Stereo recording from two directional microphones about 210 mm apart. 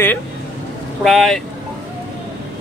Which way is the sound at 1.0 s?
Centre (ahead or behind).